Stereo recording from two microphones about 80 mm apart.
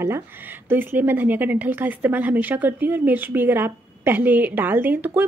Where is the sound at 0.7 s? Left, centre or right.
Right.